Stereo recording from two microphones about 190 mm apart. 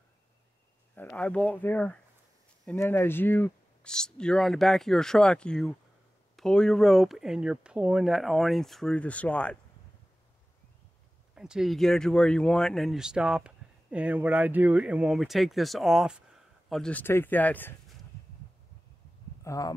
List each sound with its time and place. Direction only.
0.9 s speech: 10° left (ahead or behind)
11.3 s speech: 5° right (ahead or behind)
19.4 s speech: 15° left (ahead or behind)